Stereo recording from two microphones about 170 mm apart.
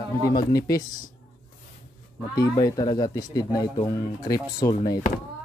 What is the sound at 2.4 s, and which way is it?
Speech, 20° left (ahead or behind).